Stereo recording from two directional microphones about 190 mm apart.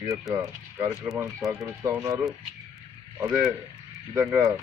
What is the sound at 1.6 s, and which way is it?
Speech, 15° right (ahead or behind).